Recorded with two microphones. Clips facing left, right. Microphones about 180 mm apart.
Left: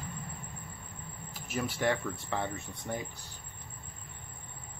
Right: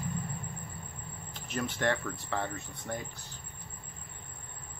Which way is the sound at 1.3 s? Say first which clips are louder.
Even; 5° left (ahead or behind).